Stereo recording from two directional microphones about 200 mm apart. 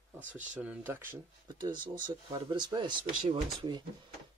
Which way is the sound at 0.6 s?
10° right (ahead or behind).